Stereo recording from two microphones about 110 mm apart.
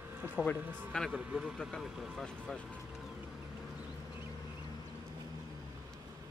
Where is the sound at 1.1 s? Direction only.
10° right (ahead or behind).